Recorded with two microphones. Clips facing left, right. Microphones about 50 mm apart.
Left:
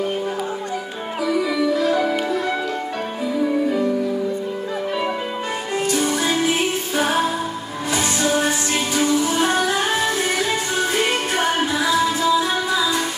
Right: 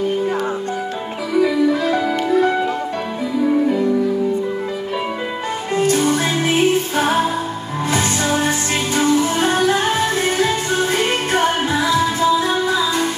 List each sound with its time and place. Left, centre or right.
1.4 s music: right
5.8 s music: right